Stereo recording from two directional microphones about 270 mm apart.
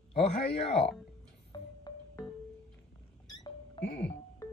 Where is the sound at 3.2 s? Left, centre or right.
Centre.